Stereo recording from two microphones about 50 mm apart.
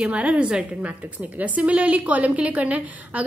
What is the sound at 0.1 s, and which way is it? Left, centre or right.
A woman's voice, right.